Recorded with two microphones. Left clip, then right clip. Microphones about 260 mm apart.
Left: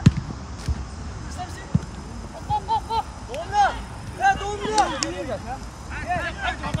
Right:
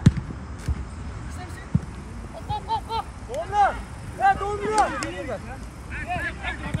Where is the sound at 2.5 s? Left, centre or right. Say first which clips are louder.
Left 4 dB; centre.